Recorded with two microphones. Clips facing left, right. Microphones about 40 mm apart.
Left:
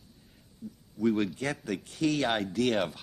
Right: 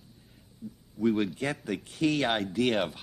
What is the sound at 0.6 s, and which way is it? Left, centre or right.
Speech, right.